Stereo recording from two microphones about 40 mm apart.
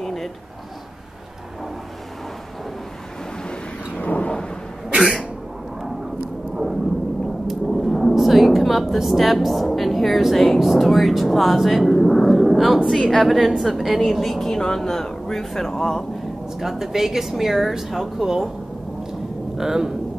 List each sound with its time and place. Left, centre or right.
0.0 s a sound: centre
4.0 s thunder: left
4.8 s cough: centre
6.5 s a sound: centre
7.4 s a woman's voice: centre
16.5 s speech: centre
19.5 s speech: centre